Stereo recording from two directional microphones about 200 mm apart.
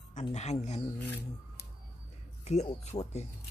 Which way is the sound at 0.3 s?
35° left (ahead or behind).